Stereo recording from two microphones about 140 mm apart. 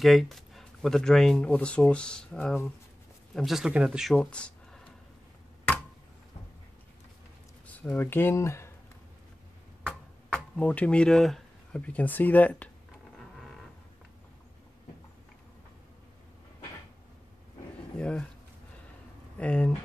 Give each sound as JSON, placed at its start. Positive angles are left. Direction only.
{"t": 0.0, "sound": "speech", "side_deg": 0}
{"t": 3.3, "sound": "speech", "side_deg": 0}
{"t": 4.2, "sound": "a sound", "side_deg": 10}
{"t": 7.6, "sound": "speech", "side_deg": 10}
{"t": 10.3, "sound": "speech", "side_deg": 10}
{"t": 17.9, "sound": "speech", "side_deg": 5}
{"t": 19.3, "sound": "speech", "side_deg": 10}